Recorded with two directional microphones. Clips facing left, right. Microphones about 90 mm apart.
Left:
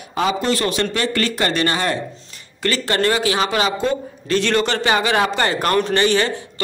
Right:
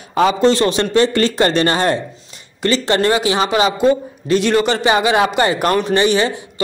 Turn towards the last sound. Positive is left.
turn(degrees=-15)  # may be behind; listen again after turning